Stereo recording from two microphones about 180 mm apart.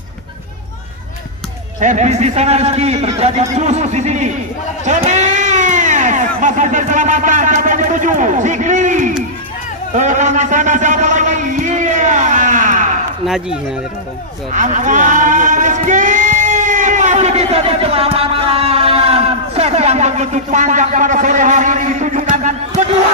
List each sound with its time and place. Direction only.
1.8 s a man's voice: 40° right (ahead or behind)
4.8 s a sound: 40° right (ahead or behind)
14.5 s speech: 45° right (ahead or behind)